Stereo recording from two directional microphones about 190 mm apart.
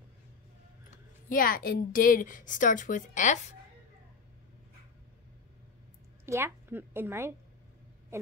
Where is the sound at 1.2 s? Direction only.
45° left (ahead or behind).